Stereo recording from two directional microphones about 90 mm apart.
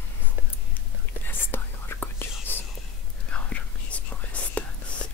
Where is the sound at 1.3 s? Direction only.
20° left (ahead or behind).